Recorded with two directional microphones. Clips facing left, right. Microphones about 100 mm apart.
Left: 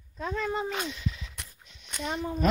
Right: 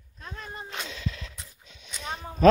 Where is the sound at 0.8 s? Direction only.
90° right.